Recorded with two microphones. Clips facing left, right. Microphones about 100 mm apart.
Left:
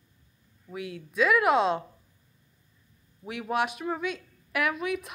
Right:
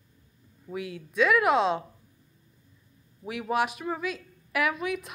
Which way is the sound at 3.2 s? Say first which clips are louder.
Right 1 dB; centre (ahead or behind).